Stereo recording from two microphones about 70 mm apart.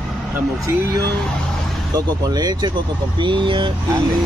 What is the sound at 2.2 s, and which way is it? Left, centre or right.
Speech, right.